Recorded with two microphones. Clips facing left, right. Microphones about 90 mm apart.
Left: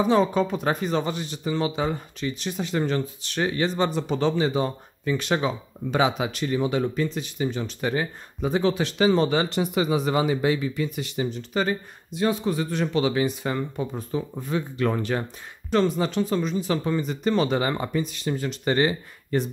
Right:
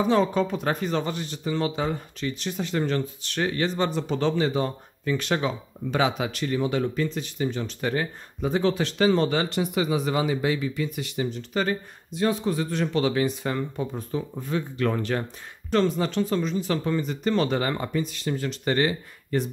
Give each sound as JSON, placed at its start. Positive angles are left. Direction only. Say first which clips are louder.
{"t": 0.0, "sound": "speech", "louder": "left 1 dB", "side_deg": 15}